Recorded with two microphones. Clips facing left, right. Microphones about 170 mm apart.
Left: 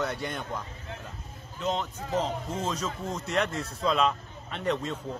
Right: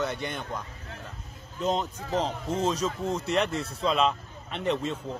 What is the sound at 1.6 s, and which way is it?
Speech, 40° right (ahead or behind).